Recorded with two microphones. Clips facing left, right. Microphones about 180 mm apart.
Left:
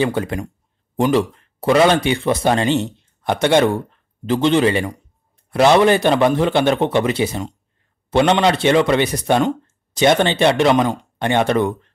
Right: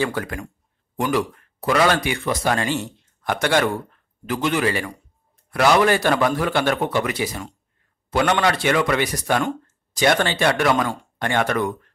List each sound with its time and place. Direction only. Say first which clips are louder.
0.0 s speech: left 5 dB; 25° left (ahead or behind)